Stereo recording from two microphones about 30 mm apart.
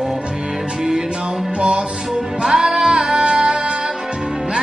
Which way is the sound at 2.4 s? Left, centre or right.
Centre.